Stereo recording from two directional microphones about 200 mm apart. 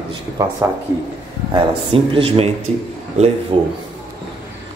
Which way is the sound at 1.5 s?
25° right (ahead or behind).